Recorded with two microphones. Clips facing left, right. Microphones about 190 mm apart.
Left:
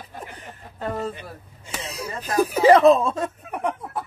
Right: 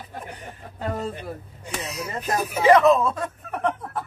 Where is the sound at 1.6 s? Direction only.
30° left (ahead or behind).